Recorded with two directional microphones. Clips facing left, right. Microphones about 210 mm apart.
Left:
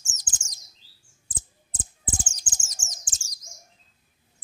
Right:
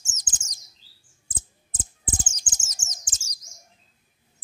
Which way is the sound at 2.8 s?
20° right (ahead or behind).